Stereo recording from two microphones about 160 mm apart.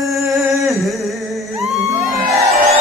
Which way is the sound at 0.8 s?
Centre (ahead or behind).